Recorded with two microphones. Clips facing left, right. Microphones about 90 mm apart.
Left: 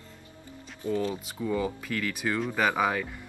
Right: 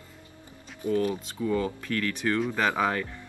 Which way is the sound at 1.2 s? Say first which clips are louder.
Right 2 dB; 10° left (ahead or behind).